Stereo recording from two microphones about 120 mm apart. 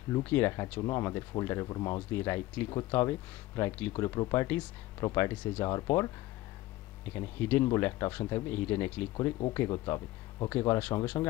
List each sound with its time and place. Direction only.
0.2 s speech: 20° left (ahead or behind)
2.1 s speech: 20° left (ahead or behind)
5.7 s speech: 30° left (ahead or behind)
7.2 s speech: 15° left (ahead or behind)
9.1 s speech: 35° left (ahead or behind)
10.5 s speech: 20° left (ahead or behind)